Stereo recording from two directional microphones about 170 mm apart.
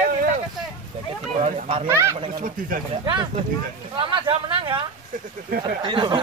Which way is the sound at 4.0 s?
30° right (ahead or behind).